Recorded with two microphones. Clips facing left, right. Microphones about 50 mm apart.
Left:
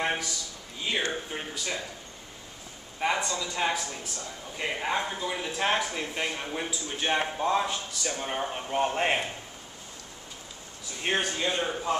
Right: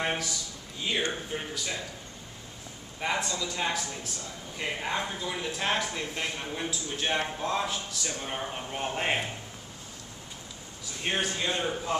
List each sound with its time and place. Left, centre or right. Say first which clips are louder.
0.0 s a sound: left 1 dB; centre
1.3 s speech: even; centre
3.0 s speech: left 2 dB; centre
11.0 s speech: left 2 dB; centre